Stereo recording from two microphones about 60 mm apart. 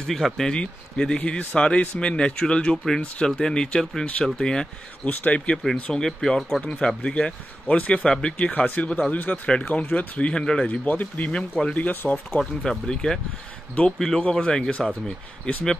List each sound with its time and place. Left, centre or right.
0.0 s speech: centre
5.0 s speech: left
5.8 s speech: centre
6.6 s speech: left
10.7 s speech: left
12.3 s speech: centre